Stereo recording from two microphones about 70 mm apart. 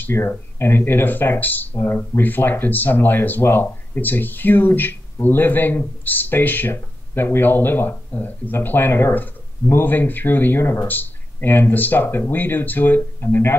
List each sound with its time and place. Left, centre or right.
0.0 s speech: left